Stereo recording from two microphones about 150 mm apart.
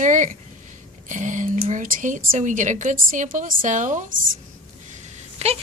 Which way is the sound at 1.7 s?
60° right (ahead or behind).